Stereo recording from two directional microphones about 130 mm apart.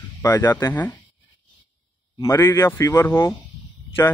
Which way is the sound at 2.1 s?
20° left (ahead or behind).